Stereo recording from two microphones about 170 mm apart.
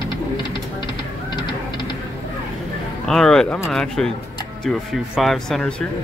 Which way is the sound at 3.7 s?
5° left (ahead or behind).